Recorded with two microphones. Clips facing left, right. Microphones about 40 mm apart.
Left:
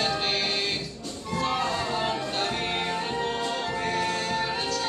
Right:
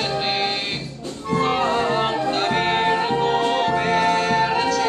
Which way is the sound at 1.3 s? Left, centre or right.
Right.